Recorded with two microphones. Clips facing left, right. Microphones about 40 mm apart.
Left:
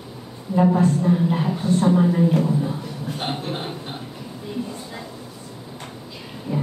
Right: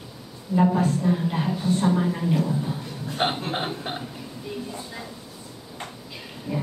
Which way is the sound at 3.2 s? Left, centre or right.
Right.